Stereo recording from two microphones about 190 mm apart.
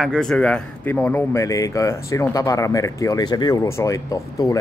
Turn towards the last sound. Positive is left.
turn(degrees=15)  # may be behind; listen again after turning